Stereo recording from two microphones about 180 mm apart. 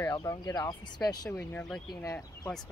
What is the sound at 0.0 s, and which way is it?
Speech, 15° left (ahead or behind).